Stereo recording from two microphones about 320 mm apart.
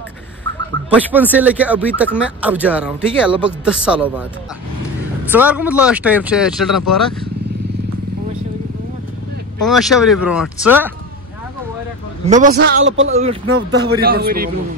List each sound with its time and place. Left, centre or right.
0.8 s speech: centre
5.3 s speech: centre
9.6 s speech: centre
12.3 s a man's voice: right
13.1 s a man's voice: centre
13.9 s a man's voice: right